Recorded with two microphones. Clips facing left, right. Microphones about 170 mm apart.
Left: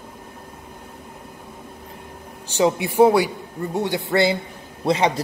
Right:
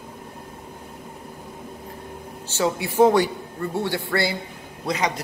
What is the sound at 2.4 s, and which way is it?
A man's voice, 20° left (ahead or behind).